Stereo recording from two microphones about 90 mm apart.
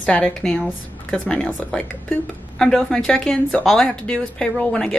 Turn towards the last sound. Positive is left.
turn(degrees=10)  # may be behind; listen again after turning